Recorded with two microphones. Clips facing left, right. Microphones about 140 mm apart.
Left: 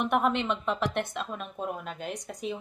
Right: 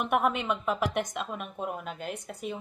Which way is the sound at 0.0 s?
5° right (ahead or behind).